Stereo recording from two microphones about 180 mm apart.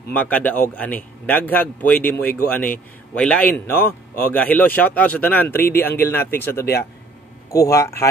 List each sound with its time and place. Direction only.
0.1 s a man's voice: 10° left (ahead or behind)